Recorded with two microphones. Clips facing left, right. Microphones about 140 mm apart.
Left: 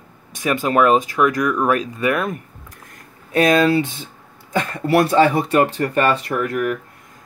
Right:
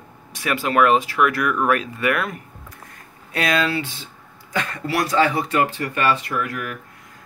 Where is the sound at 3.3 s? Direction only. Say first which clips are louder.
Left 7 dB; 40° left (ahead or behind).